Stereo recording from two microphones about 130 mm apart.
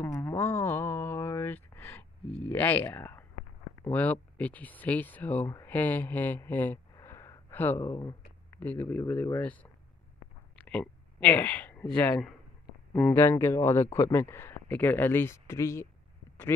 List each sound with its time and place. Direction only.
0.0 s a sound: 25° left (ahead or behind)
2.3 s speech: 15° left (ahead or behind); by 8.2 s 30° left (ahead or behind)
8.5 s speech: 15° left (ahead or behind)
10.7 s speech: 10° left (ahead or behind)
13.1 s speech: 20° left (ahead or behind)